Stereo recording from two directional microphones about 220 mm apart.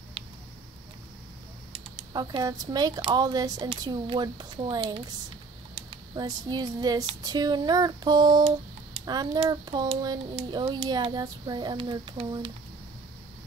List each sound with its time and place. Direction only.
1.7 s speech: 20° right (ahead or behind)